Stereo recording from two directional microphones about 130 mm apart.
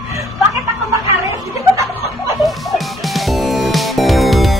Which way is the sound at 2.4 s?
Centre (ahead or behind).